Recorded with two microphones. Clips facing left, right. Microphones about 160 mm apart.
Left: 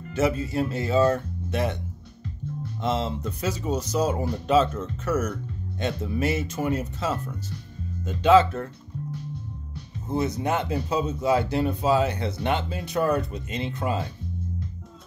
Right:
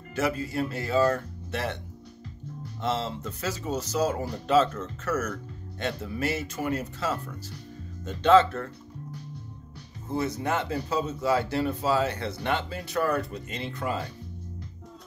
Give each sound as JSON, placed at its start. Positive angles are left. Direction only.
{"t": 0.1, "sound": "speech", "side_deg": 20}
{"t": 2.8, "sound": "speech", "side_deg": 15}
{"t": 10.0, "sound": "speech", "side_deg": 20}